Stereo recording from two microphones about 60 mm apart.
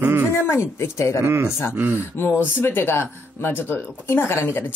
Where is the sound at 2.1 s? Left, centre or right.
Left.